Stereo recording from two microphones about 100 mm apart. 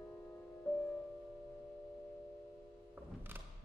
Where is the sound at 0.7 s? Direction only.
20° left (ahead or behind).